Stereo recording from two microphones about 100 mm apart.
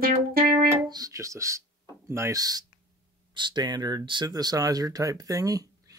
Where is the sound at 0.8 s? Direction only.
40° right (ahead or behind).